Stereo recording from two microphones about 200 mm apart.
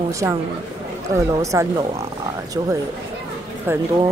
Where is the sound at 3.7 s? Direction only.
10° right (ahead or behind).